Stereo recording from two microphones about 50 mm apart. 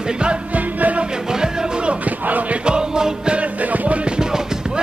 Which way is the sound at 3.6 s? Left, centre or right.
Right.